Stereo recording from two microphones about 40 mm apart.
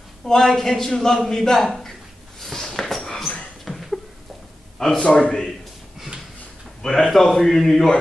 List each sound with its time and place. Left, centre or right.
0.2 s a man's voice: centre
2.5 s a sound: centre
5.0 s a man's voice: left
6.8 s a man's voice: centre